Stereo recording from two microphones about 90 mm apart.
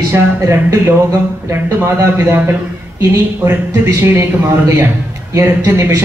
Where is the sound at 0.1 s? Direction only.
30° right (ahead or behind).